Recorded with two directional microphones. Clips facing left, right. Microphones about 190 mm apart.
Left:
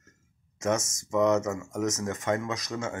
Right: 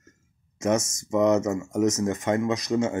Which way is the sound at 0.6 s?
15° right (ahead or behind).